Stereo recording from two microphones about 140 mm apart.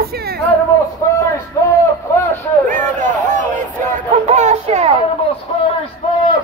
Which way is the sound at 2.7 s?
65° right (ahead or behind).